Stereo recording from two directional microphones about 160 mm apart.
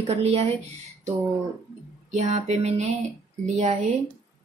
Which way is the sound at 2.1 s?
45° right (ahead or behind).